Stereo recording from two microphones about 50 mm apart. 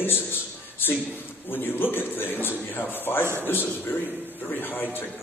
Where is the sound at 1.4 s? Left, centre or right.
Left.